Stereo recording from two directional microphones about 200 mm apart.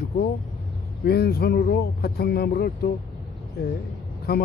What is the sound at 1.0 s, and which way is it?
Speech, 50° left (ahead or behind).